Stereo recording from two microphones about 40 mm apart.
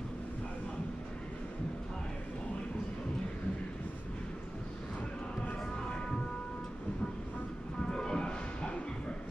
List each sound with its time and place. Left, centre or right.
7.9 s music: left